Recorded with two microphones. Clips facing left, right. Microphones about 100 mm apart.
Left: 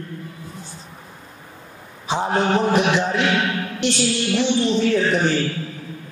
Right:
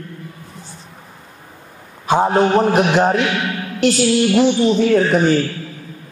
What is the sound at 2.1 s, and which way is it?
A man's voice, 50° right (ahead or behind).